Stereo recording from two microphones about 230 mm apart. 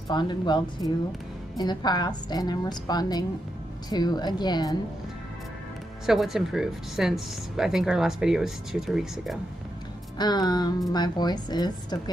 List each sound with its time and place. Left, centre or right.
0.1 s a woman's voice: centre
6.0 s speech: centre
10.1 s a woman's voice: centre